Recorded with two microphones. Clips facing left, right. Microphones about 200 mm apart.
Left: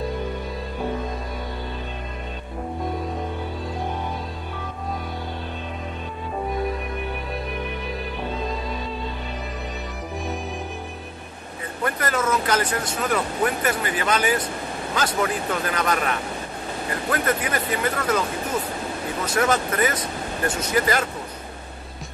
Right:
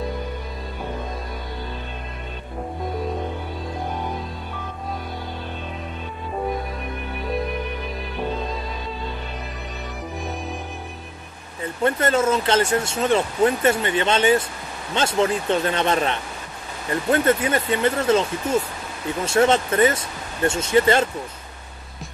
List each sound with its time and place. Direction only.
11.6 s speech: 25° right (ahead or behind)
19.2 s speech: 25° right (ahead or behind)